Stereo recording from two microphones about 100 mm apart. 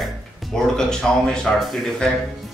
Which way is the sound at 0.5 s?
5° left (ahead or behind).